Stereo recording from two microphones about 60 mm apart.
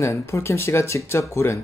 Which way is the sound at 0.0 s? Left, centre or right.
Left.